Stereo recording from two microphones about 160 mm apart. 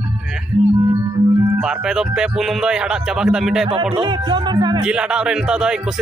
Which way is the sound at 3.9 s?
30° right (ahead or behind).